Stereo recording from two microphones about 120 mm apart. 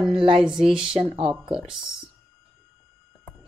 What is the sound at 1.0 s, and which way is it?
Speech, 55° right (ahead or behind).